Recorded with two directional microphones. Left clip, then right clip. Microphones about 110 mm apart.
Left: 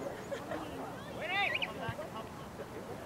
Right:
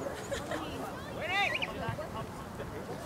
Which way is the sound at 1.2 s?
35° right (ahead or behind).